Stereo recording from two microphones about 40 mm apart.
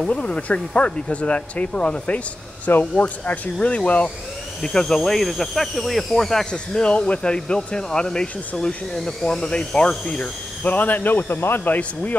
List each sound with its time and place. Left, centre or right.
0.1 s speech: left
3.0 s speech: left
3.5 s speech: left
4.6 s speech: centre
6.5 s speech: left
10.6 s speech: left